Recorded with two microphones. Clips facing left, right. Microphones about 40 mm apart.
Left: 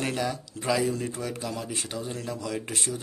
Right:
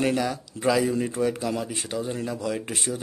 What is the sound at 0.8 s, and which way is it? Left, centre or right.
Speech, right.